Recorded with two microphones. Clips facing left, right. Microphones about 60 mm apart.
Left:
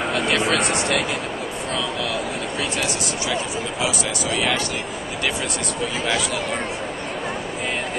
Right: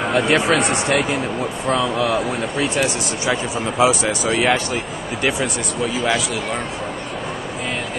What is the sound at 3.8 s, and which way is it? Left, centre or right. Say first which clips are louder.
Speech: right 9 dB; right.